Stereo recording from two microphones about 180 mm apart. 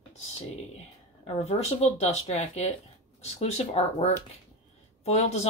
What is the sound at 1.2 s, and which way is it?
Speech, 35° left (ahead or behind).